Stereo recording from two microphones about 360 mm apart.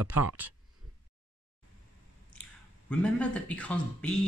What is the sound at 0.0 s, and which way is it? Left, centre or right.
Speech, right.